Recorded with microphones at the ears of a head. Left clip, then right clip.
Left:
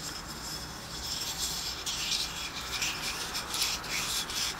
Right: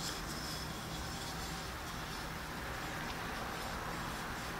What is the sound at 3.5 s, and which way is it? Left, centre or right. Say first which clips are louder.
Rub: left 9 dB; left.